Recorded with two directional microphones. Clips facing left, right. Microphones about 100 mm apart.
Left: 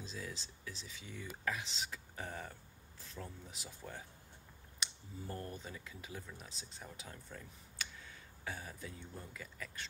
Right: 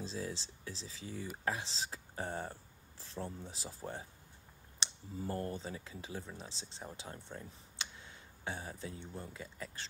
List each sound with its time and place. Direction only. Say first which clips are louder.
0.0 s speech: right 5 dB; 30° right (ahead or behind)